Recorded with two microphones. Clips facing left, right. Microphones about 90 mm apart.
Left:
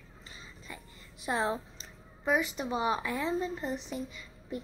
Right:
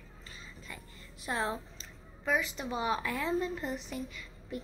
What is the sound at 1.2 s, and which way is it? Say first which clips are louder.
A child's voice: left 3 dB; 15° left (ahead or behind).